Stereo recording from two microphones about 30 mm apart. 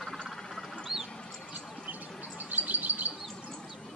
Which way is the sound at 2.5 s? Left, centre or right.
Right.